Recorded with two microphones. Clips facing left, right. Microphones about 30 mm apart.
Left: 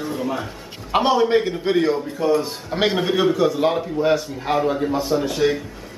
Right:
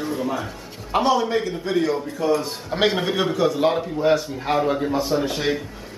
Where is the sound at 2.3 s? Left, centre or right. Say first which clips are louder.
Left 1 dB; centre.